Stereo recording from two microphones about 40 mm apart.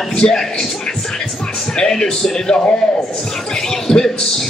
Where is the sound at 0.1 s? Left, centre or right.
Left.